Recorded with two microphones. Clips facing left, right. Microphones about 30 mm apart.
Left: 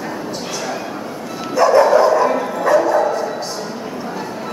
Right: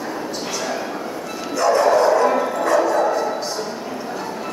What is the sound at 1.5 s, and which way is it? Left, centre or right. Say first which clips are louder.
Dog: left 5 dB; centre.